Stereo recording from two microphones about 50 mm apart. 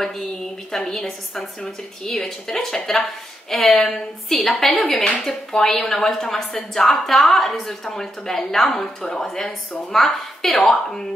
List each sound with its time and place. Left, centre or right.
0.7 s a woman's voice: centre
4.9 s speech: left
5.2 s a woman's voice: centre